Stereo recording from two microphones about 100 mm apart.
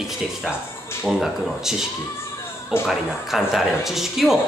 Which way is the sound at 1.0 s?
Centre (ahead or behind).